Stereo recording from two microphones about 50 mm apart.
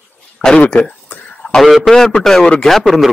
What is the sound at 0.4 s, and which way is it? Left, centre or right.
Speech, left.